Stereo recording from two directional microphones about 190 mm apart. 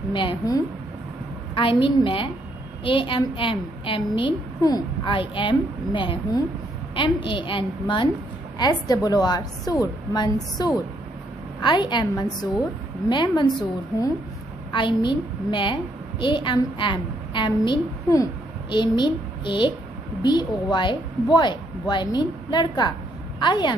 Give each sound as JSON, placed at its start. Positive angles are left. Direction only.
{"t": 0.1, "sound": "a woman's voice", "side_deg": 25}
{"t": 14.7, "sound": "a woman's voice", "side_deg": 25}